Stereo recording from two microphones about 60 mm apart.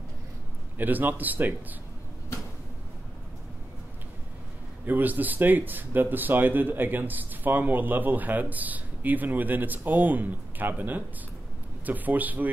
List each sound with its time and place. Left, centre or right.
0.7 s speech: right
4.8 s a man's voice: right